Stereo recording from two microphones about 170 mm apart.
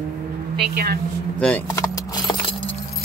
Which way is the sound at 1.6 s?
20° left (ahead or behind).